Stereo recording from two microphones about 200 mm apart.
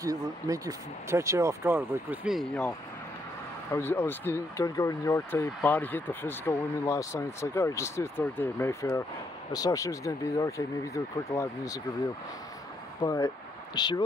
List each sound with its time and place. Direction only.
0.0 s speech: 15° right (ahead or behind); by 2.7 s centre (ahead or behind)
3.7 s speech: 10° left (ahead or behind)
13.0 s speech: 20° left (ahead or behind)